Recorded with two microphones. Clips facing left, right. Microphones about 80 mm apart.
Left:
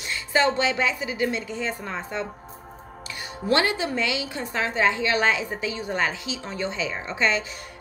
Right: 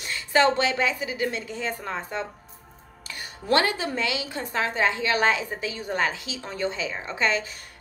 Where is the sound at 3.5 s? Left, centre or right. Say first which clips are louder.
Even; right.